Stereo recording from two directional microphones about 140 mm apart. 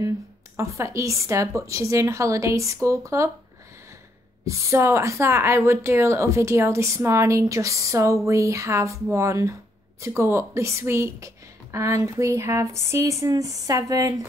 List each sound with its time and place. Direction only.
0.6 s speech: 20° right (ahead or behind)
4.5 s speech: 20° right (ahead or behind)